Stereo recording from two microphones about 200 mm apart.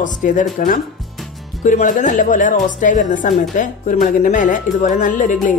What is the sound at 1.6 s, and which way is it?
A woman's voice, 40° left (ahead or behind).